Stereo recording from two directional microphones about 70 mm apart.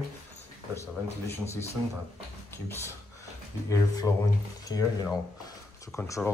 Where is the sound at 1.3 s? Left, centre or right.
Left.